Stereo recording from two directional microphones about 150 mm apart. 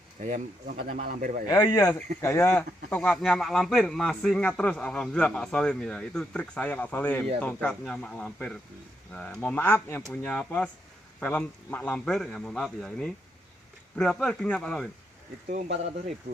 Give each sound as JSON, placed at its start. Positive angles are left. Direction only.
{"t": 0.2, "sound": "speech", "side_deg": -55}
{"t": 1.0, "sound": "a man's voice", "side_deg": -65}
{"t": 1.5, "sound": "a man's voice", "side_deg": 25}
{"t": 15.5, "sound": "speech", "side_deg": -45}